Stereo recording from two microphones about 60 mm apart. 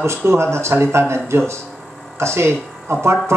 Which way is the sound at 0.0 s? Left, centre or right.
Right.